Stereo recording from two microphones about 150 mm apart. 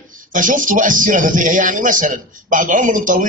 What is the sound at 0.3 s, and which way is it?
Speech, 60° right (ahead or behind).